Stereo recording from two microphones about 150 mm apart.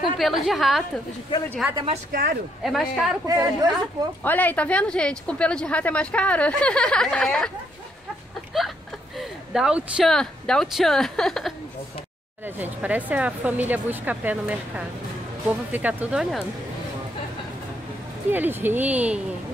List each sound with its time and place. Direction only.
0.2 s speech: centre (ahead or behind)
3.3 s a woman's voice: 25° right (ahead or behind)
4.2 s speech: 10° left (ahead or behind)
8.5 s a sound: centre (ahead or behind)
9.5 s speech: 5° right (ahead or behind)
12.5 s speech: 10° right (ahead or behind)
18.3 s speech: 15° right (ahead or behind)